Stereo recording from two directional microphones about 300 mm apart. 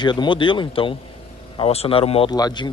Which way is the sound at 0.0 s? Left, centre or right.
Centre.